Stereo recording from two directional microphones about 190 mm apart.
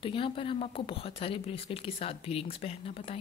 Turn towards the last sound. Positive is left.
turn(degrees=30)  # may be behind; listen again after turning